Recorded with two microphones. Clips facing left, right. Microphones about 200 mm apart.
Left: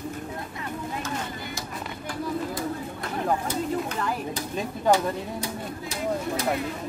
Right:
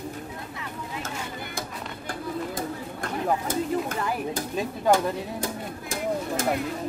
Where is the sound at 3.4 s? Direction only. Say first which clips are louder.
Right 1 dB; 50° right (ahead or behind).